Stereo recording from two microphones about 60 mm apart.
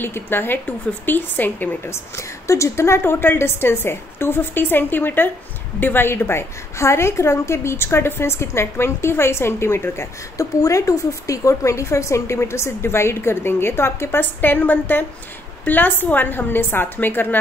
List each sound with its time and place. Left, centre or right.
0.0 s a woman's voice: left
1.9 s a woman's voice: left
3.0 s a woman's voice: left
10.3 s a woman's voice: left
14.4 s a woman's voice: left